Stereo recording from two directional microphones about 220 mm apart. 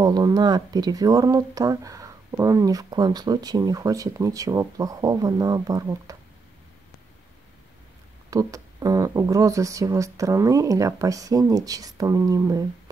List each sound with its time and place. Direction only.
0.0 s speech: 20° right (ahead or behind)
8.3 s speech: 15° right (ahead or behind)